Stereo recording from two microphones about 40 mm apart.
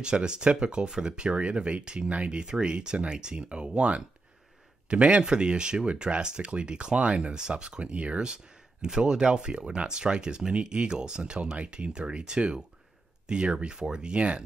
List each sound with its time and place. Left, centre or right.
0.0 s speech: right
8.8 s speech: centre